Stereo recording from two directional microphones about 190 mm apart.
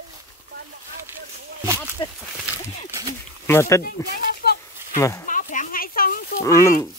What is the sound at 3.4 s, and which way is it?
Speech, 15° left (ahead or behind).